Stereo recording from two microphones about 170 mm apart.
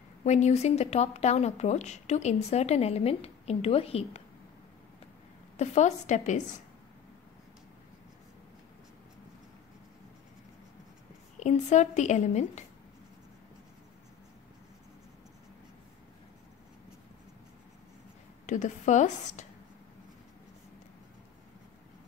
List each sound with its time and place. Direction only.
0.2 s a woman's voice: 45° left (ahead or behind)
5.6 s a woman's voice: 40° left (ahead or behind)
11.3 s a woman's voice: 45° left (ahead or behind)
18.5 s a woman's voice: 45° left (ahead or behind)